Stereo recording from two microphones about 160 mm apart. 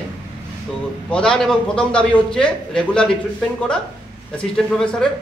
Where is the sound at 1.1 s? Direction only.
5° left (ahead or behind).